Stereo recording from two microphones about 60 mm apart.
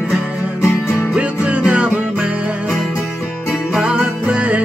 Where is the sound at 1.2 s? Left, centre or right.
Centre.